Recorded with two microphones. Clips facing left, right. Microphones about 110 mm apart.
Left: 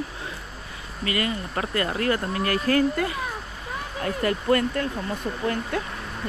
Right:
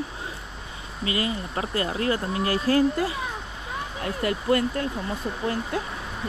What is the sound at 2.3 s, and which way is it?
Speech, 25° right (ahead or behind).